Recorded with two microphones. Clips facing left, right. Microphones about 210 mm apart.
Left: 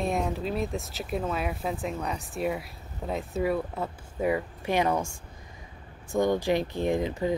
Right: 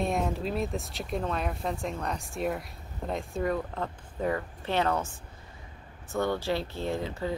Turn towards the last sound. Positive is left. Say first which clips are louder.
# left 5 dB
turn(degrees=15)  # may be behind; listen again after turning